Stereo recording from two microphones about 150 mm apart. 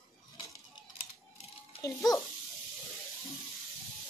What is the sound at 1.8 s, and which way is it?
Speech, 20° left (ahead or behind).